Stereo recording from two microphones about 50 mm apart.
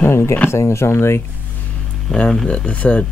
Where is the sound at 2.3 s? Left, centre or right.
Left.